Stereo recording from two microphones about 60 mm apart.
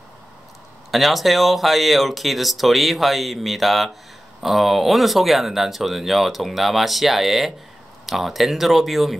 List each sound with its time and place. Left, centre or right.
0.9 s speech: centre